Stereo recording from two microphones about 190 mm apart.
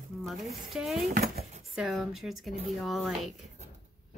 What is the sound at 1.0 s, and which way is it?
Speech, 55° right (ahead or behind).